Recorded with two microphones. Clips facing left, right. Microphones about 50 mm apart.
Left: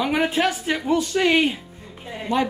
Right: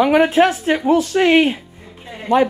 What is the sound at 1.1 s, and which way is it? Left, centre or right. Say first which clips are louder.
Speech: right 4 dB; right.